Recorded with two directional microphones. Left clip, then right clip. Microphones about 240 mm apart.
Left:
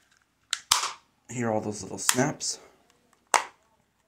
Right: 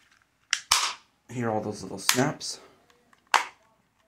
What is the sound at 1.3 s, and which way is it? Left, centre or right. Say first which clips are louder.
Speech: even; left.